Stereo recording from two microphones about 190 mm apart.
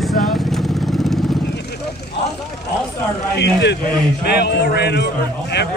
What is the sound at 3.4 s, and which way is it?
Speech, 65° left (ahead or behind).